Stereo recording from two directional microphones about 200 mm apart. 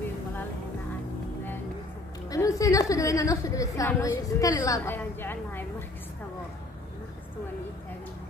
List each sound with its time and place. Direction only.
2.2 s a woman's voice: 15° left (ahead or behind)